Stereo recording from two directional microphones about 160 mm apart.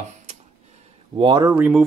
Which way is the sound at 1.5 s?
5° right (ahead or behind).